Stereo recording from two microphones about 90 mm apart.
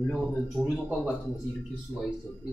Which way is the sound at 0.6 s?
15° left (ahead or behind).